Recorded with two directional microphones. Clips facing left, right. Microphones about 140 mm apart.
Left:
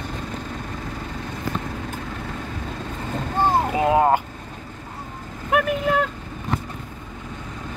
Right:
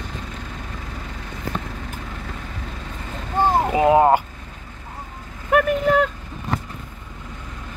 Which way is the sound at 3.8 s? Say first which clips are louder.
Right 4 dB; 25° right (ahead or behind).